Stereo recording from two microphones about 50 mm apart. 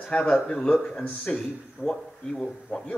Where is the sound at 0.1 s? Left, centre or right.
Centre.